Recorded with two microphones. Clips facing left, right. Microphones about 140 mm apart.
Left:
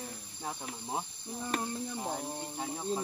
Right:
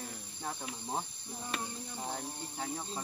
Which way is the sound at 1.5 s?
45° left (ahead or behind).